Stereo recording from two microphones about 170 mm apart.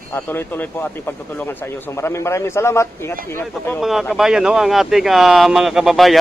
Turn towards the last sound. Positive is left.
turn(degrees=0)  # may be behind; listen again after turning